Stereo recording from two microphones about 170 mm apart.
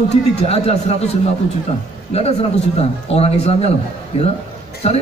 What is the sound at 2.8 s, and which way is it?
Speech, 35° left (ahead or behind).